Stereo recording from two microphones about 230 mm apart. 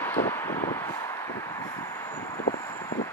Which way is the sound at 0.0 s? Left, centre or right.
Centre.